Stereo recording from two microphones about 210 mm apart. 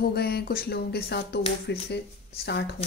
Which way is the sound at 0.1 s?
50° left (ahead or behind).